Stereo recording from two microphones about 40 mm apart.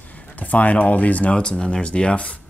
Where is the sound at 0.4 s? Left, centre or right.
Left.